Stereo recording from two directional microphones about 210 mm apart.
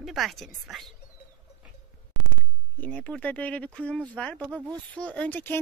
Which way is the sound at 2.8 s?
5° left (ahead or behind).